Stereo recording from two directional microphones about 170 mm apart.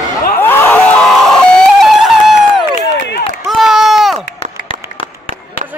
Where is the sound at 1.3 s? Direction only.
Centre (ahead or behind).